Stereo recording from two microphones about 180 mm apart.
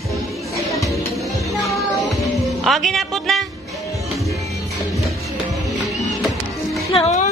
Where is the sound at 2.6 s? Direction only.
Centre (ahead or behind).